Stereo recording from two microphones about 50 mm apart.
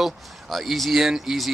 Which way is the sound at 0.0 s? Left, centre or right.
Centre.